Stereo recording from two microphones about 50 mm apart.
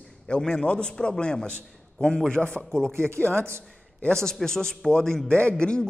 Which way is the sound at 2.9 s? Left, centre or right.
Right.